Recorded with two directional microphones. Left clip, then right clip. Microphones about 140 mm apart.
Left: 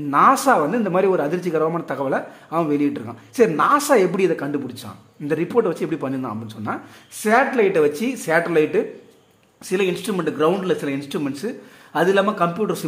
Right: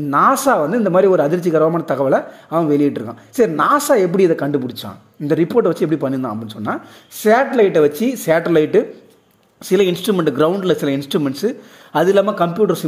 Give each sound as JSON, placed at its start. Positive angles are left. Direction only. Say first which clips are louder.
{"t": 0.1, "sound": "speech", "louder": "right 1 dB", "side_deg": -35}
{"t": 4.6, "sound": "speech", "louder": "right 6 dB", "side_deg": -50}